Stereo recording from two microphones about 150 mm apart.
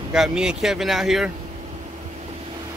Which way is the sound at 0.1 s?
5° right (ahead or behind).